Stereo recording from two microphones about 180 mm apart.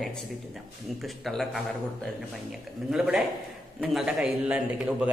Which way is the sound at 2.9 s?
Centre (ahead or behind).